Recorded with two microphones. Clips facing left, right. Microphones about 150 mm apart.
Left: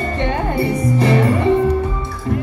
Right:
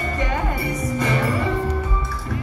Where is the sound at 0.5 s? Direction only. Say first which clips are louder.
Left 7 dB; 35° left (ahead or behind).